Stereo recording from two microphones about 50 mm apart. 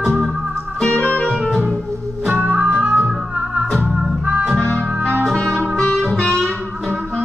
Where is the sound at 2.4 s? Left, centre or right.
Right.